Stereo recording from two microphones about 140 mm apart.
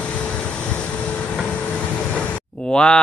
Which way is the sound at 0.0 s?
5° left (ahead or behind).